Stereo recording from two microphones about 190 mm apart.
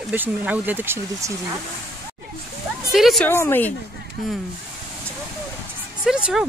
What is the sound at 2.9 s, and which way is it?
Speech, centre (ahead or behind).